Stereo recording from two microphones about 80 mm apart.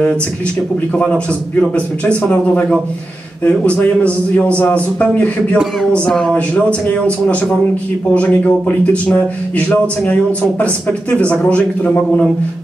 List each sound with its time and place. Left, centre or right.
0.9 s a man's voice: centre
6.0 s speech: centre
6.3 s a man's voice: centre
10.6 s a man's voice: centre